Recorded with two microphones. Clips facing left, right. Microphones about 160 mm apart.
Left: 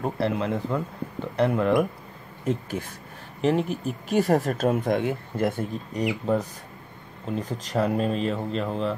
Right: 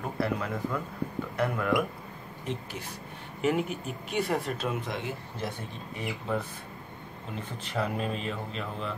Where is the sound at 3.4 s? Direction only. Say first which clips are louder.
Left 5 dB; 30° left (ahead or behind); by 6.0 s 50° left (ahead or behind).